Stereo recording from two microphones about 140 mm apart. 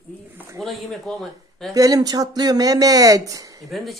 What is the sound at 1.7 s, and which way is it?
Speech, 25° right (ahead or behind).